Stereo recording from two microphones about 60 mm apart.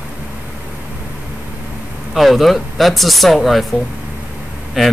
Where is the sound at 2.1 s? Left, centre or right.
Centre.